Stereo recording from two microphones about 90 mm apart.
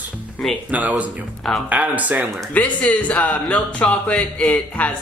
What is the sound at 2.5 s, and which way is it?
Speech, 15° left (ahead or behind).